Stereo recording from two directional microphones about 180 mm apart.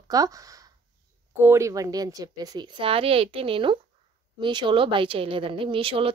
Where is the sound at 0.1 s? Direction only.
20° right (ahead or behind).